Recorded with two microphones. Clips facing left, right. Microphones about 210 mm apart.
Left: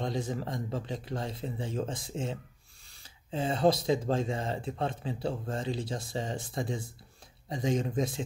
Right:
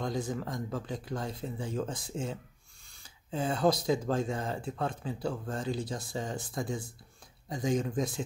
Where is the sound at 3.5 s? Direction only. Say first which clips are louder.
Left 2 dB; 25° left (ahead or behind).